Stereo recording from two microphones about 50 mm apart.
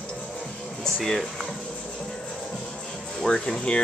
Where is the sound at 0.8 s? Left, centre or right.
Centre.